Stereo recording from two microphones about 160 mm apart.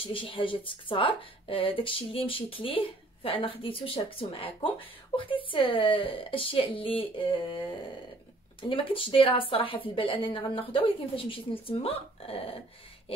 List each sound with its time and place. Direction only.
0.0 s speech: 35° left (ahead or behind)
8.6 s speech: 35° left (ahead or behind)